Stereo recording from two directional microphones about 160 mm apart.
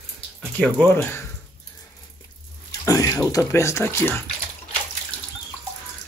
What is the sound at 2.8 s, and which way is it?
Bathtub, 20° left (ahead or behind).